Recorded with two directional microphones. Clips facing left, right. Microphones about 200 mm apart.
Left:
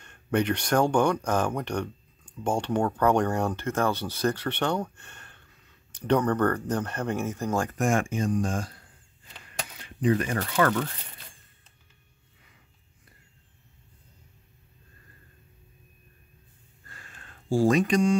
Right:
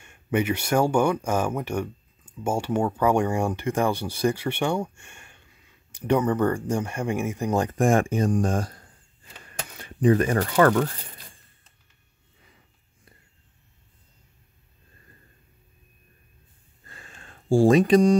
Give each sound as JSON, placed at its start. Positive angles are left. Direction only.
{"t": 0.0, "sound": "speech", "side_deg": -10}
{"t": 7.7, "sound": "speech", "side_deg": -35}
{"t": 9.8, "sound": "speech", "side_deg": -45}
{"t": 16.8, "sound": "a sound", "side_deg": -25}